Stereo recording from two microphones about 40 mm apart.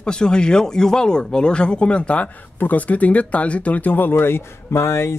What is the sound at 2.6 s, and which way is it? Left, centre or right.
Speech, left.